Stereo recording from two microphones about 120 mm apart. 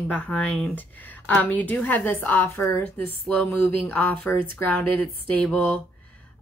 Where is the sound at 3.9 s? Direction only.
15° left (ahead or behind).